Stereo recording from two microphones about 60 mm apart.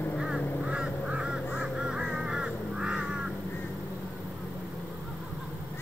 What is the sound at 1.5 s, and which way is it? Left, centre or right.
Crow, centre.